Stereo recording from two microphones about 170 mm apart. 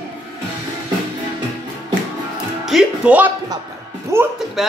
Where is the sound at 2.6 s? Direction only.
5° right (ahead or behind).